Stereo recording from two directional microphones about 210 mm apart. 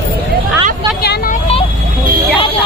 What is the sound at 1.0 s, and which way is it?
Vehicle, 50° left (ahead or behind).